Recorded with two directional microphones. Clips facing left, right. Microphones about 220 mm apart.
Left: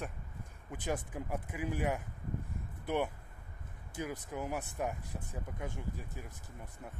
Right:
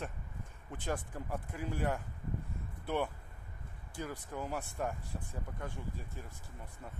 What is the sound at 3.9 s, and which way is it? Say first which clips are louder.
Speech: left 2 dB; 15° left (ahead or behind).